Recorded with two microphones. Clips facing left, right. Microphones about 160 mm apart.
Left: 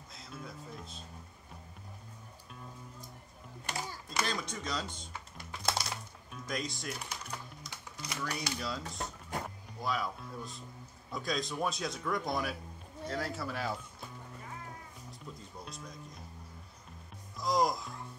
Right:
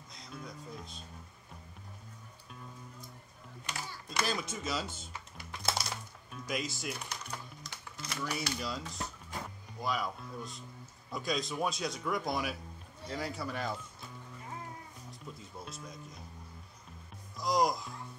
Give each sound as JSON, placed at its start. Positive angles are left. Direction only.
{"t": 0.1, "sound": "speech", "side_deg": 5}
{"t": 4.1, "sound": "speech", "side_deg": -5}
{"t": 5.7, "sound": "music", "side_deg": 0}
{"t": 7.1, "sound": "music", "side_deg": 10}
{"t": 8.2, "sound": "speech", "side_deg": -5}
{"t": 15.3, "sound": "speech", "side_deg": -5}
{"t": 17.4, "sound": "music", "side_deg": 0}